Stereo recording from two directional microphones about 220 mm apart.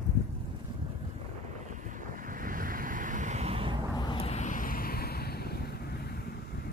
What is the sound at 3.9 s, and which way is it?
Vehicle, 20° left (ahead or behind).